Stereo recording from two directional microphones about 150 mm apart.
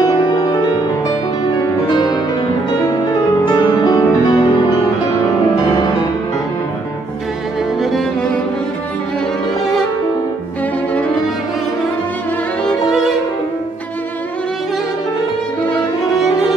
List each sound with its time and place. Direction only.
0.1 s music: 30° left (ahead or behind)
1.9 s music: 30° left (ahead or behind)
3.4 s music: 30° left (ahead or behind)
7.8 s music: centre (ahead or behind)
12.6 s violin: centre (ahead or behind)